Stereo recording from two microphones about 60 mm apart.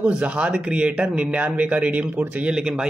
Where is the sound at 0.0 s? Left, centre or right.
Centre.